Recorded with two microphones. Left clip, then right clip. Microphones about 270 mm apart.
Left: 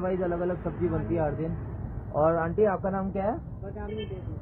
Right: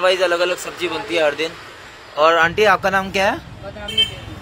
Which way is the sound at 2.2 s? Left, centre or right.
Right.